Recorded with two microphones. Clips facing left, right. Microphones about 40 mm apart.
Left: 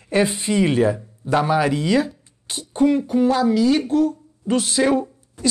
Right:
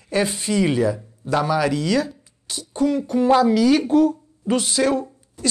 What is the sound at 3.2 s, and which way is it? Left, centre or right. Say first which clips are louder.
Speech: right 4 dB; right.